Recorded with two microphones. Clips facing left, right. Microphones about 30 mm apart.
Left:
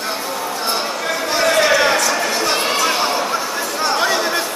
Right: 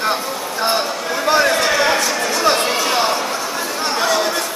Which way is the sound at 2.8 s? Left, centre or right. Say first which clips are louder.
Even; centre.